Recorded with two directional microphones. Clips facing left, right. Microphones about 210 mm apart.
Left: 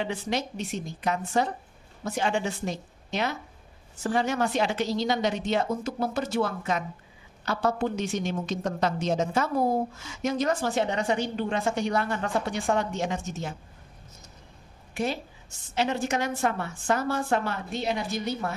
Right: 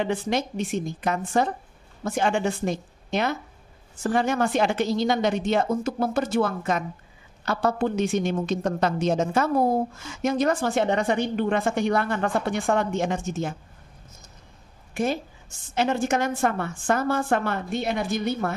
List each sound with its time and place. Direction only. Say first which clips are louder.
0.0 s a woman's voice: right 4 dB; 50° right (ahead or behind)
15.7 s a woman's voice: right 4 dB; 50° right (ahead or behind)